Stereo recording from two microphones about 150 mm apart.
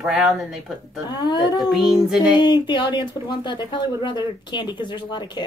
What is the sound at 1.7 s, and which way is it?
Speech, centre (ahead or behind).